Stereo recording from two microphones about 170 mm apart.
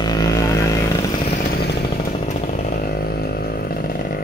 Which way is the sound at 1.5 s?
75° left (ahead or behind).